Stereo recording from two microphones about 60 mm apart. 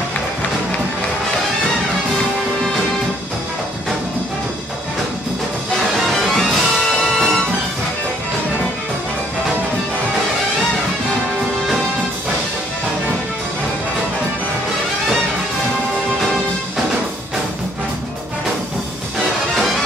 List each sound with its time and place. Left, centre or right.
6.0 s music: centre